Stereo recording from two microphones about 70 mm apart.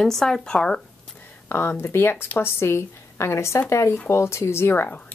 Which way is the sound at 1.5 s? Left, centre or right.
Left.